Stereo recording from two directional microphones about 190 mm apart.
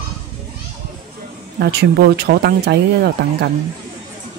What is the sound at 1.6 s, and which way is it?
Speech, 60° right (ahead or behind).